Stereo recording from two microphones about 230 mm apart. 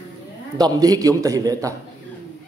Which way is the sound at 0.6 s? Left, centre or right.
Centre.